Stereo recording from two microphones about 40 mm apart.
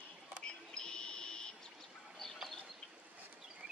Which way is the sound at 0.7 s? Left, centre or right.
Left.